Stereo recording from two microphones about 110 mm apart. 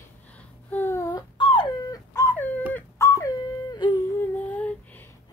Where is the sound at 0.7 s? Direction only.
25° left (ahead or behind).